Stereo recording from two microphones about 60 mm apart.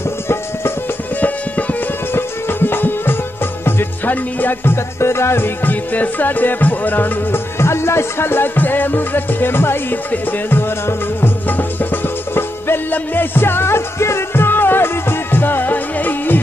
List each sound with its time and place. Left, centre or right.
2.1 s music: left
7.5 s music: left